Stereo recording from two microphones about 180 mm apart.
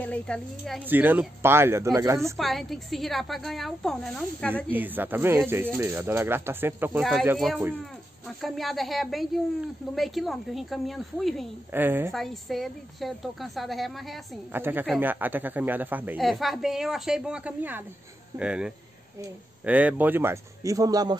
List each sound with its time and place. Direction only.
0.0 s speech: 5° left (ahead or behind)
0.8 s a man's voice: 10° right (ahead or behind)
2.3 s speech: centre (ahead or behind)
4.6 s a man's voice: 10° right (ahead or behind)
7.3 s speech: centre (ahead or behind)
11.7 s a man's voice: 10° right (ahead or behind)
12.1 s speech: centre (ahead or behind)
14.5 s a man's voice: 10° right (ahead or behind)